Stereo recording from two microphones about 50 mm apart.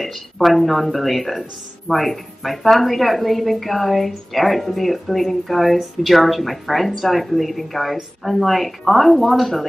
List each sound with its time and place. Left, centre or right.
0.0 s speech: centre